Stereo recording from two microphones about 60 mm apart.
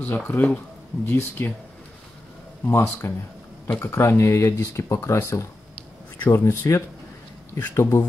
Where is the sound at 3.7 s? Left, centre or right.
Left.